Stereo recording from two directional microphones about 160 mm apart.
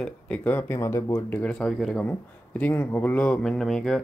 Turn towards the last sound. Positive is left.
turn(degrees=5)  # may be behind; listen again after turning